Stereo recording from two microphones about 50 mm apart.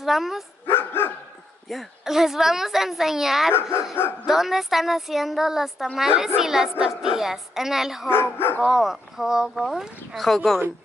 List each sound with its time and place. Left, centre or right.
0.0 s a woman's voice: centre
0.7 s dog: left
1.7 s a woman's voice: centre
8.1 s speech: left
8.6 s a woman's voice: centre